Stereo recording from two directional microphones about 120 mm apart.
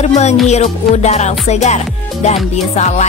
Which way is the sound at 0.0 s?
65° left (ahead or behind).